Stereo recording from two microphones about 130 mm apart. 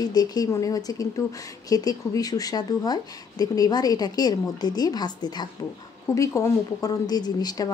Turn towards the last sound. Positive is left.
turn(degrees=30)  # may be behind; listen again after turning